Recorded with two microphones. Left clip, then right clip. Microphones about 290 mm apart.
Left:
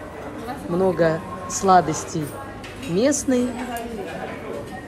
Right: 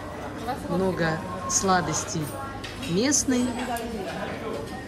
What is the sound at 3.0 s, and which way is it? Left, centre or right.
Speech, centre.